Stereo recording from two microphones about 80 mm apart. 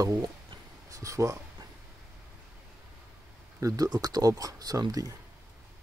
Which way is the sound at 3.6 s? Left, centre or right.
Right.